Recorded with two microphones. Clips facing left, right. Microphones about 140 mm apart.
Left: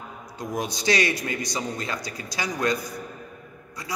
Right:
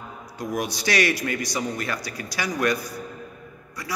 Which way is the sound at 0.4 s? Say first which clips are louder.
Right 2 dB; 20° left (ahead or behind).